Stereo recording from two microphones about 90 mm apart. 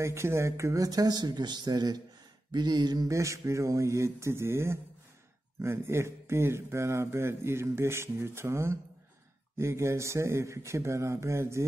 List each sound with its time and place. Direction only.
0.0 s speech: 30° right (ahead or behind); by 3.2 s 50° right (ahead or behind)
3.2 s speech: 35° right (ahead or behind)